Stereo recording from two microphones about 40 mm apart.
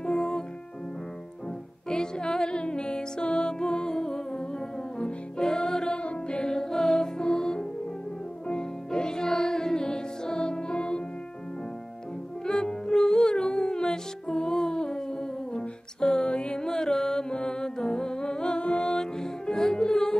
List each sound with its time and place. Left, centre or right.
0.0 s music: centre
1.9 s music: centre
5.9 s music: left
12.4 s music: centre